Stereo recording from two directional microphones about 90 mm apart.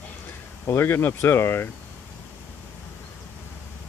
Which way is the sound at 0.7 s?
25° left (ahead or behind).